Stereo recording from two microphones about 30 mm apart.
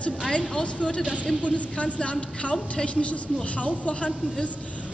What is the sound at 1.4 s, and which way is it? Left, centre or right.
Speech, left.